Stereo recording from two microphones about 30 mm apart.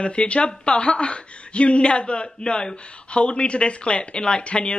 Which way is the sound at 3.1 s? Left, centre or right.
Left.